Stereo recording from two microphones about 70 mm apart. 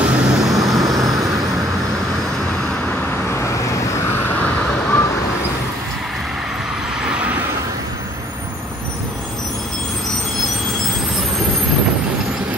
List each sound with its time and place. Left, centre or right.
0.0 s vehicle: centre
0.4 s vehicle: centre
3.3 s vehicle: left
4.2 s vehicle: left